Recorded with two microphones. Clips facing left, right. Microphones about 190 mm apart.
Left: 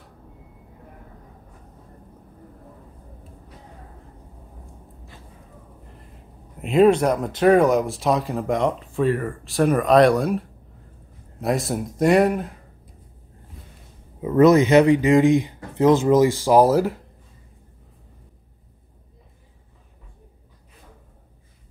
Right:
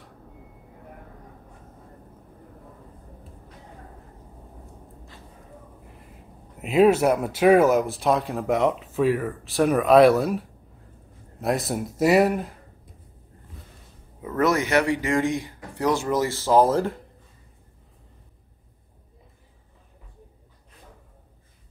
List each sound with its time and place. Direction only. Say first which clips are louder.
6.6 s speech: left 2 dB; centre (ahead or behind)
14.2 s speech: left 8 dB; 20° left (ahead or behind)